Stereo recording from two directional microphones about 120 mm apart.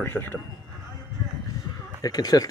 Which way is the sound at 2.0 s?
30° left (ahead or behind).